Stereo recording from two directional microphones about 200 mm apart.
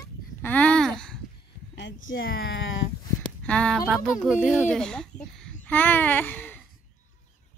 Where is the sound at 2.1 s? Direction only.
50° left (ahead or behind).